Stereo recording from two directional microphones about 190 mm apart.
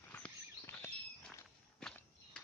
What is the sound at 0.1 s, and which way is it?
Walk, 10° left (ahead or behind).